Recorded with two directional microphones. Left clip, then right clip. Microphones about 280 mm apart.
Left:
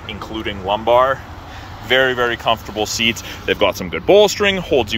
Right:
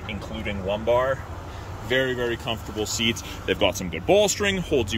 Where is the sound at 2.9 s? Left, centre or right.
Centre.